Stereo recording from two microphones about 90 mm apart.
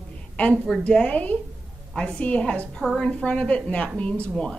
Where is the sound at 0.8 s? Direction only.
15° left (ahead or behind).